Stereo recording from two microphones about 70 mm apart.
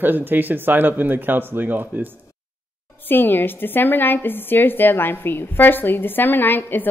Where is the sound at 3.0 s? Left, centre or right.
Left.